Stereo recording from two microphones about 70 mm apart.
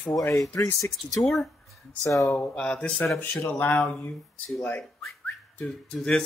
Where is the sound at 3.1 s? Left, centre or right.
Left.